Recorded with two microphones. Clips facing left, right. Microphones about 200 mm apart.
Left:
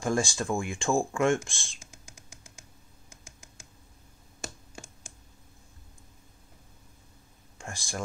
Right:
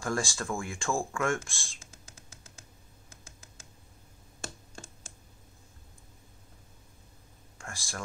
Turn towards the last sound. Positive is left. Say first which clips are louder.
# left 3 dB
turn(degrees=20)  # may be behind; listen again after turning